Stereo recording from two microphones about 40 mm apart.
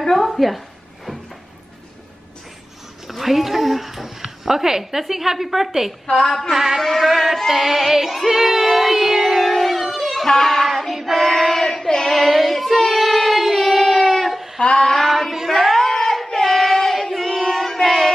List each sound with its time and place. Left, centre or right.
0.0 s a sound: centre
0.3 s a woman's voice: centre
3.1 s speech: centre
6.0 s a woman's voice: left
6.5 s a sound: centre
6.8 s music: centre
8.3 s a sound: centre
10.2 s child singing: centre
14.7 s child singing: centre